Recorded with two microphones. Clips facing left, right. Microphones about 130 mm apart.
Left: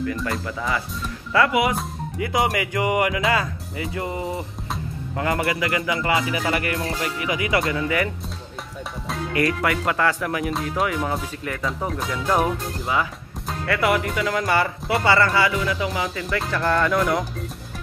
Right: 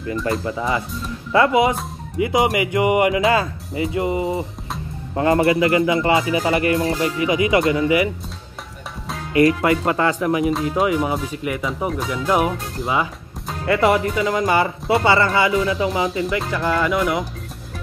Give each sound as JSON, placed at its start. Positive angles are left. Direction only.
{"t": 0.0, "sound": "speech", "side_deg": -30}
{"t": 7.7, "sound": "speech", "side_deg": -15}
{"t": 9.3, "sound": "speech", "side_deg": -25}
{"t": 11.9, "sound": "speech", "side_deg": 0}
{"t": 13.7, "sound": "speech", "side_deg": -25}
{"t": 16.3, "sound": "speech", "side_deg": 0}